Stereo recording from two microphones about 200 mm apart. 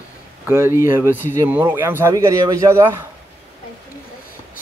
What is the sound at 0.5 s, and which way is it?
Speech, 10° right (ahead or behind).